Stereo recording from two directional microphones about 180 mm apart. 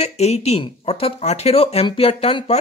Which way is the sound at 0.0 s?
35° left (ahead or behind).